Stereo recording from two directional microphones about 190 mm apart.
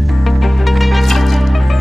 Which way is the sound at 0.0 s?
Centre (ahead or behind).